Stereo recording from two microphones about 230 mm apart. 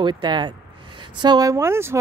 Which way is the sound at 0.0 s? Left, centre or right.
Centre.